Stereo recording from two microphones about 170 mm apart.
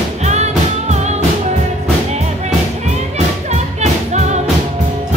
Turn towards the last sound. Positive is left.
turn(degrees=-40)  # may be behind; listen again after turning